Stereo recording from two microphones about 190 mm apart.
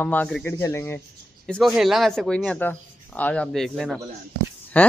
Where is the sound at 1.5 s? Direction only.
Centre (ahead or behind).